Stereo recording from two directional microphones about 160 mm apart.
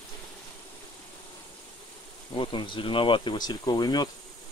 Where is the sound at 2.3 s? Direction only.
30° left (ahead or behind).